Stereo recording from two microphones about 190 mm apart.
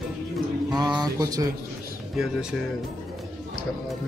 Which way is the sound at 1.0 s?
20° right (ahead or behind).